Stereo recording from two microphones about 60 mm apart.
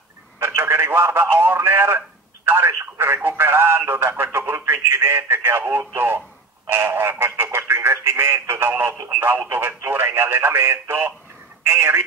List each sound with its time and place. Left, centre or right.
0.4 s speech: right